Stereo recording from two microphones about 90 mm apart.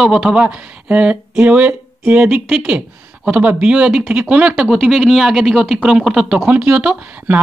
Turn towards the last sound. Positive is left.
turn(degrees=-10)  # may be behind; listen again after turning